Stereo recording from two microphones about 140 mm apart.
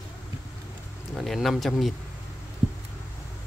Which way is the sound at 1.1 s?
Centre (ahead or behind).